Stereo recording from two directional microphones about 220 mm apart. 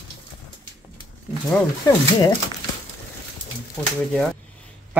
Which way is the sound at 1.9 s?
15° left (ahead or behind).